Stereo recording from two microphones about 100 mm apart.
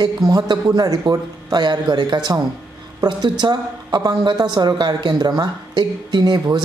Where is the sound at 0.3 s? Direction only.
40° right (ahead or behind).